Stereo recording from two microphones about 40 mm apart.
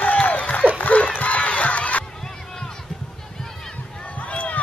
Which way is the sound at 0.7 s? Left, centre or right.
Left.